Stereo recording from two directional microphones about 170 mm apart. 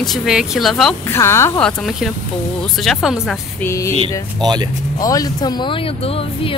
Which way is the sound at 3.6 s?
15° left (ahead or behind).